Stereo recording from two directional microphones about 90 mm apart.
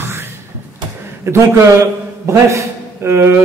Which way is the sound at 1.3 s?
35° right (ahead or behind).